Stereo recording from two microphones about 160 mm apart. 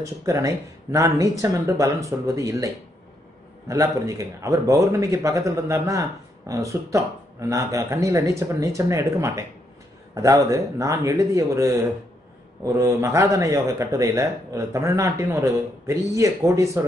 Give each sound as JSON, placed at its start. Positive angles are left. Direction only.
{"t": 0.0, "sound": "a man's voice", "side_deg": -20}